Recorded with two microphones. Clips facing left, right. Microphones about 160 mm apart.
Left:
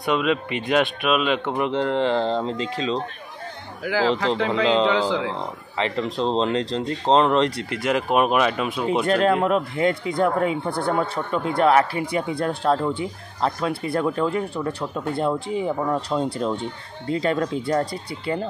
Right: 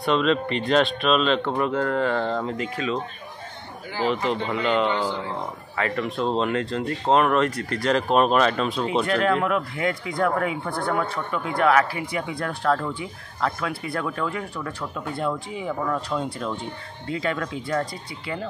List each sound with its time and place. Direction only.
0.0 s speech: 10° left (ahead or behind)
3.8 s speech: 90° left
5.8 s speech: 20° left (ahead or behind)
9.0 s speech: 30° left (ahead or behind)